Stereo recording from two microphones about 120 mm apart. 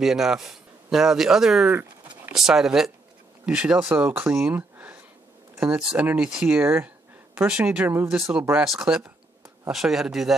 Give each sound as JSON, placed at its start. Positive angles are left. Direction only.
{"t": 0.0, "sound": "speech", "side_deg": -5}
{"t": 2.3, "sound": "speech", "side_deg": -5}
{"t": 8.1, "sound": "speech", "side_deg": -5}